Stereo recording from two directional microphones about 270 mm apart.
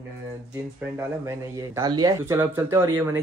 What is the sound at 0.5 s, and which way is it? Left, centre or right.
Speech, centre.